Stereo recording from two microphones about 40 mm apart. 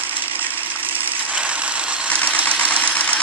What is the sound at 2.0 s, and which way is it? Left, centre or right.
Engine, left.